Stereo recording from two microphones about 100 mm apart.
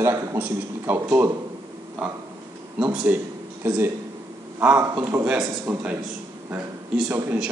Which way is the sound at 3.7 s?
20° right (ahead or behind).